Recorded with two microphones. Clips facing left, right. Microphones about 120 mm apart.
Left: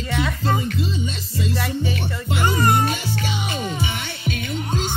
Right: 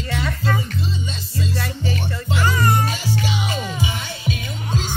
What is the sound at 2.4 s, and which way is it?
Music, 25° left (ahead or behind).